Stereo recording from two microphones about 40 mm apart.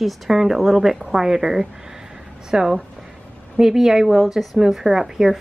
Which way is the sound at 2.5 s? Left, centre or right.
Right.